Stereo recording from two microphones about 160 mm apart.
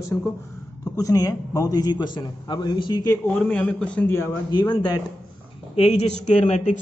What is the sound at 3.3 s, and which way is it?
A man's voice, 10° left (ahead or behind).